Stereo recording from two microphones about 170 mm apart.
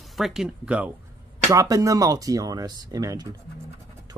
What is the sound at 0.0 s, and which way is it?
Speech, centre (ahead or behind).